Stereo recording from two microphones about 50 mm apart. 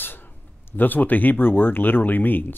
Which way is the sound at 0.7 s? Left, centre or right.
Left.